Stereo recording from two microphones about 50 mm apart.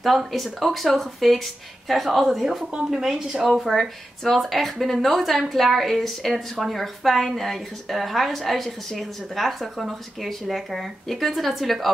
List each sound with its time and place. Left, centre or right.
0.0 s a woman's voice: centre